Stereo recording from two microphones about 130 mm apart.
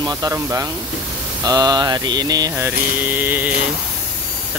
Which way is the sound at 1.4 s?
30° right (ahead or behind).